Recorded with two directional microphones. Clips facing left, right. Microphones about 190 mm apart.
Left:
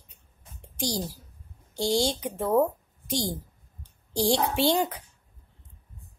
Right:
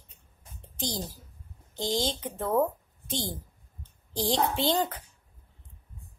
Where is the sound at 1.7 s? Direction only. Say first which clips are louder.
Left 4 dB; 10° left (ahead or behind).